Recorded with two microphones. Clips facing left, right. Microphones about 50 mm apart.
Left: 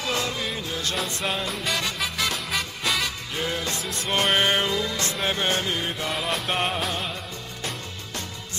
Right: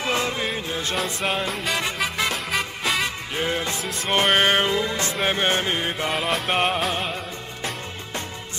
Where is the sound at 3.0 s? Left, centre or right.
Right.